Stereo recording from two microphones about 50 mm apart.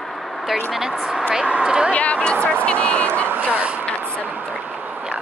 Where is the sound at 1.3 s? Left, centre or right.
Centre.